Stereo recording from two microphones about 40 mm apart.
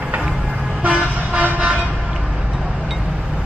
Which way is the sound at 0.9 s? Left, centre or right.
Right.